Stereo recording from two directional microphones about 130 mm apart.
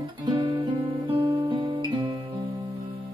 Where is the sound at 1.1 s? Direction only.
40° right (ahead or behind).